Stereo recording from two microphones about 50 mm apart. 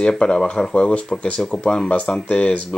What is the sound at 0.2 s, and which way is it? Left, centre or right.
Speech, centre.